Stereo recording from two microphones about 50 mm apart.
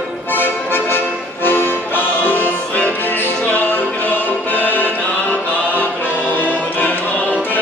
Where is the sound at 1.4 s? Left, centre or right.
Left.